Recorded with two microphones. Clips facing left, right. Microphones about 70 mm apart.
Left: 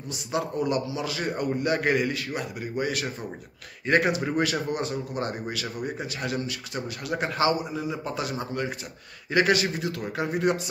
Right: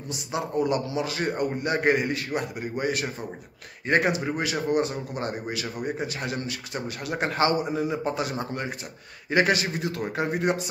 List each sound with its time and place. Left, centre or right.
0.3 s a man's voice: right
4.2 s speech: centre
4.6 s a man's voice: right
7.3 s a man's voice: right
8.0 s a man's voice: right